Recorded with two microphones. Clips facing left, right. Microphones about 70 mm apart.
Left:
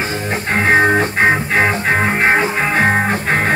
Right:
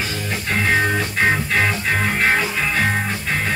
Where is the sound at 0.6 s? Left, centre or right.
Left.